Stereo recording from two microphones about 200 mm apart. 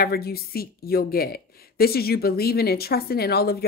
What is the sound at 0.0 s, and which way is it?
Speech, 50° left (ahead or behind).